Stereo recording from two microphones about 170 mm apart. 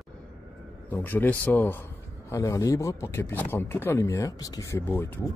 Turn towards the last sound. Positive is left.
turn(degrees=10)  # may be behind; listen again after turning